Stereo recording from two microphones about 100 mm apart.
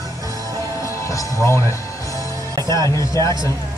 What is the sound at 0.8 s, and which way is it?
Music, 30° left (ahead or behind).